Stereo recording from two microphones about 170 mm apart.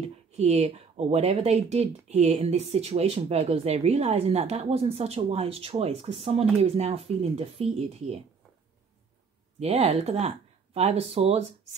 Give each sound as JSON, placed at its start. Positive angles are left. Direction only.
{"t": 0.0, "sound": "speech", "side_deg": -40}
{"t": 9.6, "sound": "speech", "side_deg": -40}